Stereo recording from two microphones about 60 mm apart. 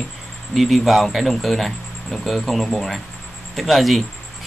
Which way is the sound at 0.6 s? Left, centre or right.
Centre.